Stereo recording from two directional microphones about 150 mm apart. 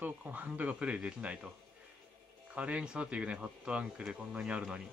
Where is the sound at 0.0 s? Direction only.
10° right (ahead or behind).